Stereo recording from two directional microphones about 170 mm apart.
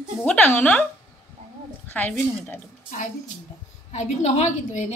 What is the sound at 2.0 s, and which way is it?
Speech, 10° left (ahead or behind).